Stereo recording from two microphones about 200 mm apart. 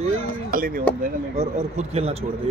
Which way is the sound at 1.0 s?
35° right (ahead or behind).